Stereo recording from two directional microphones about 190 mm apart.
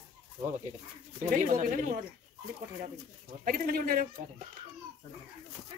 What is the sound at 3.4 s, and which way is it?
Speech, 50° right (ahead or behind).